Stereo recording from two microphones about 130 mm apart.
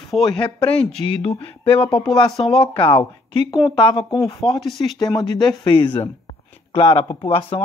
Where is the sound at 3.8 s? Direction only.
40° left (ahead or behind).